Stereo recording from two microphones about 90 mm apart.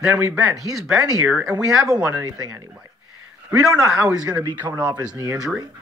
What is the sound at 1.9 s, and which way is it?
Speech, 20° right (ahead or behind).